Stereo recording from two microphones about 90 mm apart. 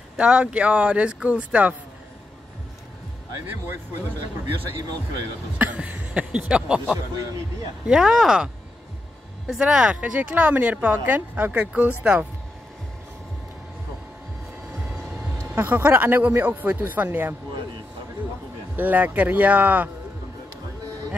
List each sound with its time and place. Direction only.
0.2 s a woman's voice: 10° right (ahead or behind)
5.6 s a woman's voice: 15° right (ahead or behind)
9.5 s a woman's voice: 10° right (ahead or behind)
14.9 s vehicle: 15° right (ahead or behind)
15.5 s speech: 20° right (ahead or behind)
18.8 s a woman's voice: 20° right (ahead or behind)